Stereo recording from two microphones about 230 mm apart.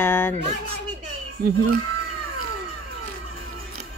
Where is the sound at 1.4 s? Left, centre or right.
Right.